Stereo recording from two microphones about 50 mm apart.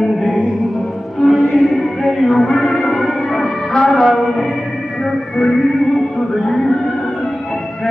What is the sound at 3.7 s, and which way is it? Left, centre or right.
Music, centre.